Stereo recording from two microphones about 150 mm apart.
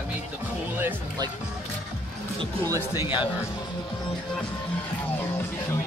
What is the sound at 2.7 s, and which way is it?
Speech, 15° right (ahead or behind).